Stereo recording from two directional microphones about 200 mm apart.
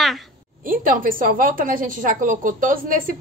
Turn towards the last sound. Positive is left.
turn(degrees=-45)  # may be behind; listen again after turning